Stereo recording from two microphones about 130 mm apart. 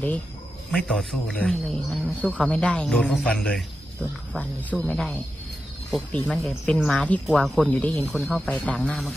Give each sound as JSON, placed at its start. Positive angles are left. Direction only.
{"t": 0.7, "sound": "speech", "side_deg": 5}